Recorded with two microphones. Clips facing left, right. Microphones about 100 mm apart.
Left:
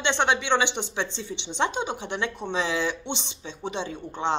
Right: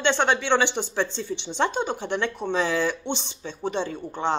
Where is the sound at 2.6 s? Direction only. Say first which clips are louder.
Right 2 dB; 45° right (ahead or behind).